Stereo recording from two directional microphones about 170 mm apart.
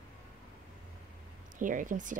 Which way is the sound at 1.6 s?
50° right (ahead or behind).